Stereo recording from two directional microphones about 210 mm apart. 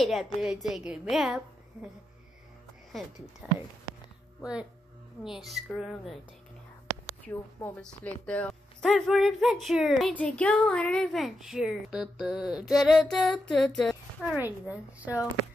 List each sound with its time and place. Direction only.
0.0 s a woman's voice: centre (ahead or behind)
3.4 s speech: 5° right (ahead or behind)
5.2 s a woman's voice: centre (ahead or behind)
7.2 s a woman's voice: 5° left (ahead or behind)